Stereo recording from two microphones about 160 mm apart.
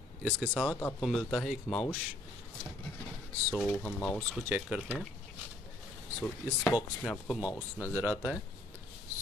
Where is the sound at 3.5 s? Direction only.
Centre (ahead or behind).